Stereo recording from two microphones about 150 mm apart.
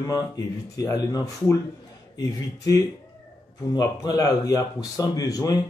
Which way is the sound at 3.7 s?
25° left (ahead or behind).